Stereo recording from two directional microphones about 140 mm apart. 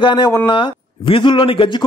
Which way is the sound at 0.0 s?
30° left (ahead or behind).